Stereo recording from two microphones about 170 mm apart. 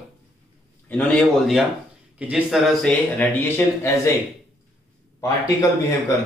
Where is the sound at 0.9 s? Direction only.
5° left (ahead or behind).